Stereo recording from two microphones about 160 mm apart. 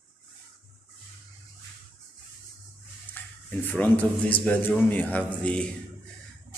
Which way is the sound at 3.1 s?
10° left (ahead or behind).